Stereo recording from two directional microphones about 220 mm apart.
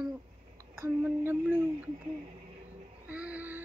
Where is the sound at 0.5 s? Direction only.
10° right (ahead or behind).